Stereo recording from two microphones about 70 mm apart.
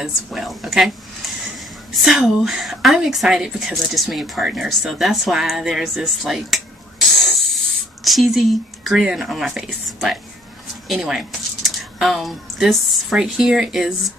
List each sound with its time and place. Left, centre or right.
0.0 s a woman's voice: centre
2.0 s a woman's voice: centre